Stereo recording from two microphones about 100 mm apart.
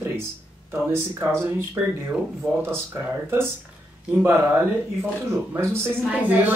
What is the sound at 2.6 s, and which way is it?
Speech, 25° right (ahead or behind).